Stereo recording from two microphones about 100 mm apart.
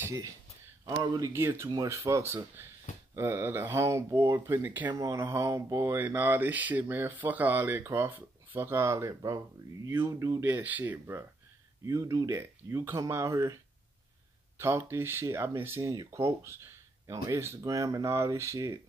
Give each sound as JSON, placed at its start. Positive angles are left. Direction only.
{"t": 0.8, "sound": "speech", "side_deg": -45}
{"t": 1.3, "sound": "speech", "side_deg": -25}
{"t": 1.7, "sound": "speech", "side_deg": -35}
{"t": 4.6, "sound": "speech", "side_deg": -15}
{"t": 4.9, "sound": "speech", "side_deg": -30}
{"t": 10.4, "sound": "speech", "side_deg": -15}
{"t": 11.8, "sound": "speech", "side_deg": -30}
{"t": 14.6, "sound": "speech", "side_deg": -25}